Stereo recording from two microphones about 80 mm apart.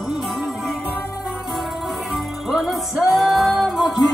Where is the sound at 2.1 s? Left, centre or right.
Centre.